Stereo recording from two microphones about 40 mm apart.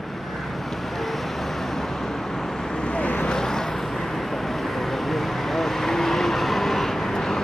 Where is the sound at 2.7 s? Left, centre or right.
Left.